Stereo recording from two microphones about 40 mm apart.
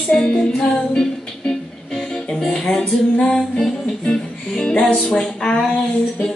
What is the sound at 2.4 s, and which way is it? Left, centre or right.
Music, centre.